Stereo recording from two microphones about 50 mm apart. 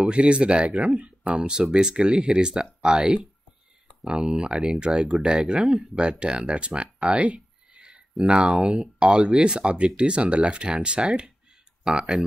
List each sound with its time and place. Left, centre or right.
0.0 s speech: right
1.3 s speech: centre
8.4 s speech: centre
8.6 s speech: centre